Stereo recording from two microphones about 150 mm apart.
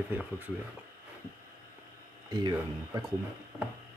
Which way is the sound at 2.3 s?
30° right (ahead or behind).